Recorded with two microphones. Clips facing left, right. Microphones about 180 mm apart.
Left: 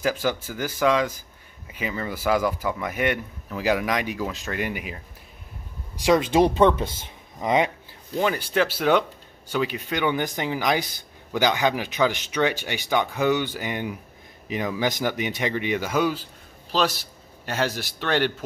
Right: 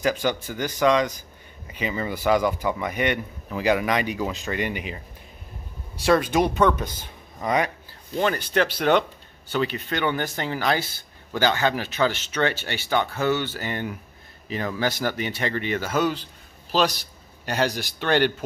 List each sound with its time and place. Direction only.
0.0 s speech: 5° left (ahead or behind)
5.9 s speech: 15° left (ahead or behind)
6.3 s speech: 30° left (ahead or behind)
8.2 s speech: 10° left (ahead or behind)